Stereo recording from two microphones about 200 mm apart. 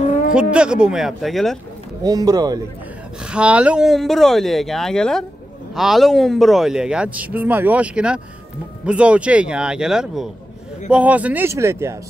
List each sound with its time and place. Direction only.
0.3 s speech: 5° right (ahead or behind)
2.0 s speech: 20° right (ahead or behind)
3.2 s speech: 5° right (ahead or behind)